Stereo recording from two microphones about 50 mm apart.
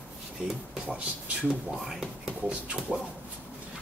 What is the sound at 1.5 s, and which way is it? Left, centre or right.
Speech, centre.